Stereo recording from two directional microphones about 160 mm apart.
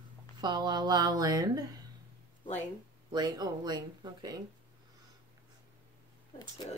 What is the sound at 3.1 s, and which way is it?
Speech, 25° right (ahead or behind).